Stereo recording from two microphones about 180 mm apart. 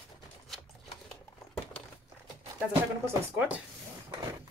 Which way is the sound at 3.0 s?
10° right (ahead or behind).